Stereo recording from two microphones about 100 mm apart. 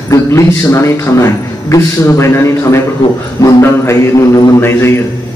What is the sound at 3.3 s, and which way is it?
Music, 30° left (ahead or behind).